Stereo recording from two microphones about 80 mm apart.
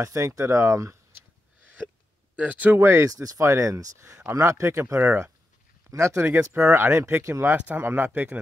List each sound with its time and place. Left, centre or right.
0.0 s speech: right
2.3 s speech: centre
2.8 s speech: right
7.5 s speech: right